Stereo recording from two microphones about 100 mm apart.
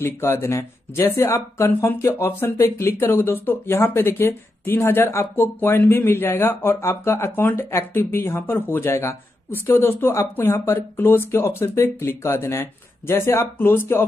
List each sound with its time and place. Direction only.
0.0 s speech: 25° left (ahead or behind)